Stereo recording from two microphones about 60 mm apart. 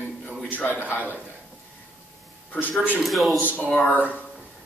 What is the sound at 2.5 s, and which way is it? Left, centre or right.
Speech, left.